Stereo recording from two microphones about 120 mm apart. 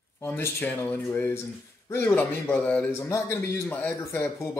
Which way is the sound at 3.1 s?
25° left (ahead or behind).